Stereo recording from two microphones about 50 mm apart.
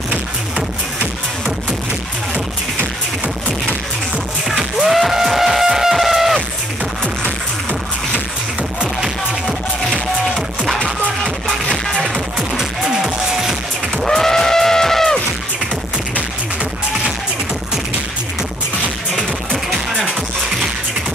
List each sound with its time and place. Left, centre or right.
4.7 s a sound: centre
11.2 s music: centre
12.4 s music: centre
14.0 s music: centre